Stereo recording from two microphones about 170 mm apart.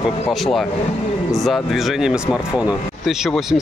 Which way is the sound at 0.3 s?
Centre (ahead or behind).